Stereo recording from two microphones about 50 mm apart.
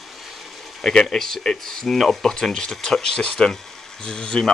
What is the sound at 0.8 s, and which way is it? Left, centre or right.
Speech, centre.